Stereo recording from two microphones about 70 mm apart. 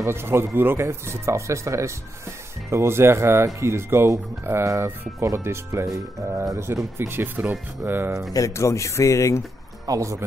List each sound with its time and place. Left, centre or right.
0.0 s speech: right
7.0 s speech: right
8.3 s speech: left
9.8 s speech: right